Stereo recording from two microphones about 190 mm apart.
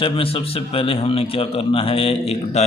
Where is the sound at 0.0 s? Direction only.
30° left (ahead or behind).